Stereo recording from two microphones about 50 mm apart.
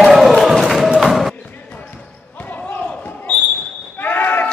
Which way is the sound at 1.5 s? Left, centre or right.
Left.